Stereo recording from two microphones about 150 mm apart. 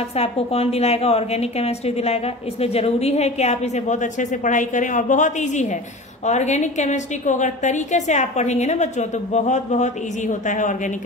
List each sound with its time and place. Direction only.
0.1 s a woman's voice: 40° left (ahead or behind)